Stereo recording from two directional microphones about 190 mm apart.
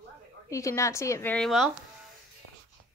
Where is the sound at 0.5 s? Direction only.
15° left (ahead or behind).